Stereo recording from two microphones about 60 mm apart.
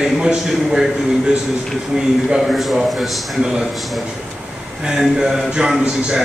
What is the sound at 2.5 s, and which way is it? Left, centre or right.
Speech, centre.